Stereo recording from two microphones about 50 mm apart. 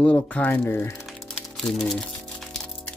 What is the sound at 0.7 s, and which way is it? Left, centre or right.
Speech, left.